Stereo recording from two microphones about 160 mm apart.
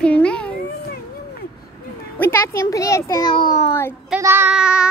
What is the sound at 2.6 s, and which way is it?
A child's voice, 20° left (ahead or behind).